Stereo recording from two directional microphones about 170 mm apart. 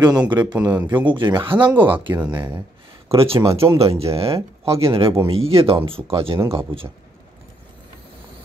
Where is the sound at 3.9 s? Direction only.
35° right (ahead or behind).